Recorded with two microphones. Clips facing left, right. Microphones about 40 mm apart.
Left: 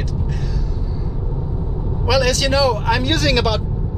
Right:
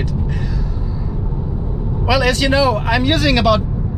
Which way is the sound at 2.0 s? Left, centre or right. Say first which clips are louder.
Right 2 dB; centre.